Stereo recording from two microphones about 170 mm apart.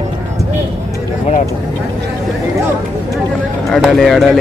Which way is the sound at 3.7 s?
Centre (ahead or behind).